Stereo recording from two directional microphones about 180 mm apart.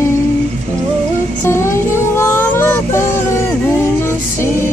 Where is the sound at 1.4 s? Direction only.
15° left (ahead or behind).